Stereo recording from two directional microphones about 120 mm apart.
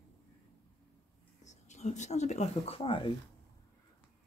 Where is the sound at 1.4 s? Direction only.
80° left; by 3.1 s 50° left (ahead or behind).